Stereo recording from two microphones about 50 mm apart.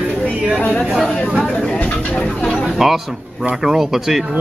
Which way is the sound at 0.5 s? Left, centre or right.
Left.